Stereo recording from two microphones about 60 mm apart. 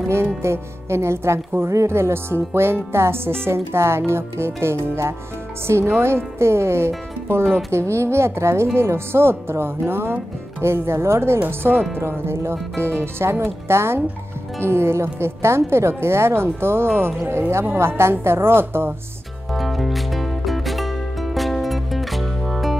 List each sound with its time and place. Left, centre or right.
0.1 s a woman's voice: right
19.5 s music: centre